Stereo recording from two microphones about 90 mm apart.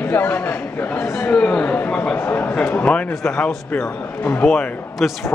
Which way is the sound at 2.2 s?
25° left (ahead or behind).